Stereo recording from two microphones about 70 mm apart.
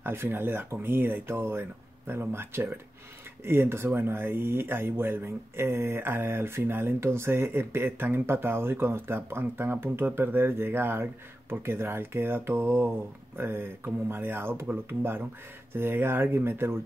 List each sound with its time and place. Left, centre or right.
0.0 s speech: right